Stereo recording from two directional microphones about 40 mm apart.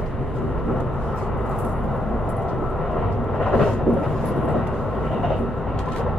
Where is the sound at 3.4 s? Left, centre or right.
Centre.